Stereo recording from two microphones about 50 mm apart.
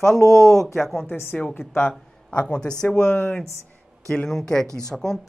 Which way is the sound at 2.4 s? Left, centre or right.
Centre.